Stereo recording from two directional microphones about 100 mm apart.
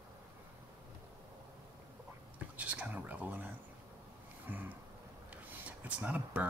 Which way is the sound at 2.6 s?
15° right (ahead or behind).